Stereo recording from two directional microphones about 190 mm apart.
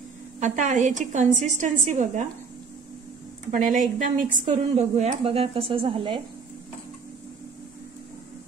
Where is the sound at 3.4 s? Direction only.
45° right (ahead or behind); by 6.2 s 30° right (ahead or behind).